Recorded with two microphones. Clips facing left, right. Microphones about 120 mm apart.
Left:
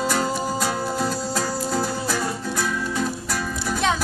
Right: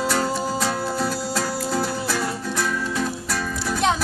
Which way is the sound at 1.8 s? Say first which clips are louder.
Even; 15° left (ahead or behind).